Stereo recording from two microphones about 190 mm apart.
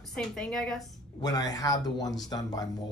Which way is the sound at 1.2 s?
20° left (ahead or behind).